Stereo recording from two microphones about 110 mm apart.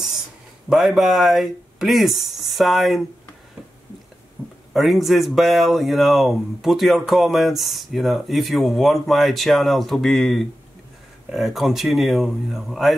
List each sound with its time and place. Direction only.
0.7 s speech: 5° right (ahead or behind)
4.4 s a sound: 15° right (ahead or behind)
4.7 s speech: centre (ahead or behind)